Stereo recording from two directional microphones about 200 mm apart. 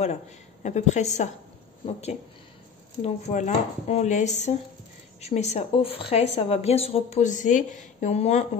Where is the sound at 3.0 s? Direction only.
35° left (ahead or behind).